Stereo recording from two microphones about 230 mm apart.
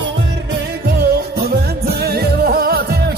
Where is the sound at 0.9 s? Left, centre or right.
Right.